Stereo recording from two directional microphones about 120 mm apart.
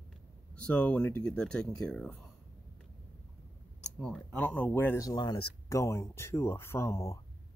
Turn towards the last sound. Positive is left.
turn(degrees=25)  # may be behind; listen again after turning